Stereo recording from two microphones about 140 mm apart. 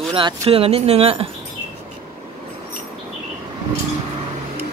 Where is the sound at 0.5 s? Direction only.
45° right (ahead or behind).